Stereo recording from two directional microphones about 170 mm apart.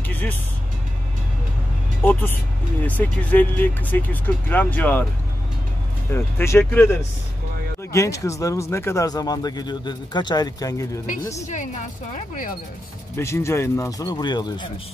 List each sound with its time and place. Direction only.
0.1 s music: 10° left (ahead or behind)
2.0 s speech: 10° left (ahead or behind)
6.1 s speech: 15° left (ahead or behind)
13.1 s speech: 15° left (ahead or behind)